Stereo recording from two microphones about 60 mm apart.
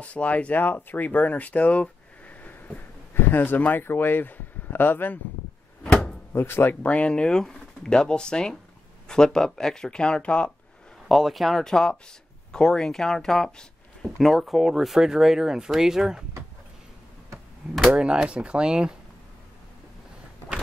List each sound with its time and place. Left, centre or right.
0.0 s speech: left
5.9 s door: centre
6.3 s speech: left
6.8 s speech: centre
11.1 s speech: centre
17.9 s speech: centre